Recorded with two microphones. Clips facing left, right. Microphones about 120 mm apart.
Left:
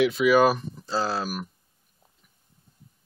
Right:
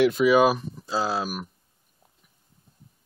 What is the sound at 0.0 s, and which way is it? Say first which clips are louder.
Speech: right 2 dB; 40° right (ahead or behind).